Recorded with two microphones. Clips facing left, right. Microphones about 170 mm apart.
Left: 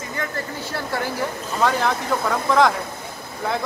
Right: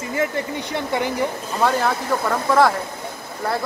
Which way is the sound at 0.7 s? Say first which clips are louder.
Right 3 dB; 20° right (ahead or behind).